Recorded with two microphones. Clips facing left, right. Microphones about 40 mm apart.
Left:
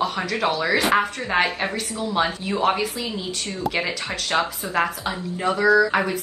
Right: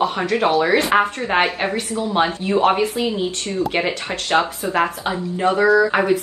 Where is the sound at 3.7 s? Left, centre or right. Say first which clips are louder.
Right 2 dB; right.